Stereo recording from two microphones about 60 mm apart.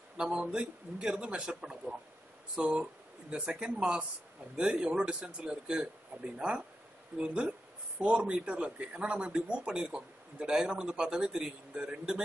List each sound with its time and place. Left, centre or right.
0.2 s speech: centre